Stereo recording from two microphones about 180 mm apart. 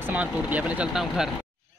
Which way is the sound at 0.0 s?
10° right (ahead or behind).